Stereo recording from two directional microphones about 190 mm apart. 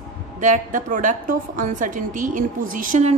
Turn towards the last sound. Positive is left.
turn(degrees=-40)  # may be behind; listen again after turning